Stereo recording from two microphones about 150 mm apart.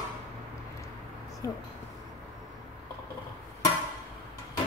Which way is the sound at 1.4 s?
20° left (ahead or behind).